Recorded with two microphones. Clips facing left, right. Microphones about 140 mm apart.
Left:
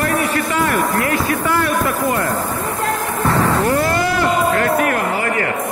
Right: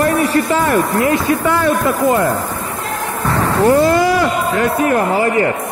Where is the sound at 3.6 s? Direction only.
25° right (ahead or behind).